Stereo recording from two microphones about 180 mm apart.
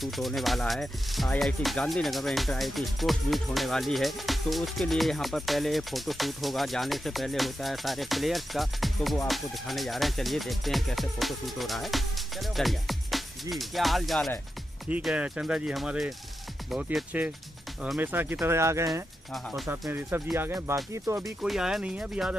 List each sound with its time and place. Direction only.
0.0 s speech: centre (ahead or behind); by 18.9 s 15° right (ahead or behind)
19.3 s speech: centre (ahead or behind)
19.9 s speech: 10° right (ahead or behind)
21.4 s speech: 5° right (ahead or behind)